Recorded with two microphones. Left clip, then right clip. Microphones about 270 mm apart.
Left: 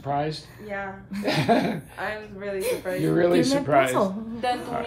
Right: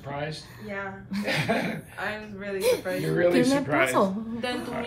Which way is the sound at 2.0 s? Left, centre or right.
Left.